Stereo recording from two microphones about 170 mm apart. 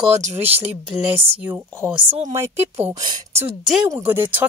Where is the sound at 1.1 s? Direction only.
35° right (ahead or behind).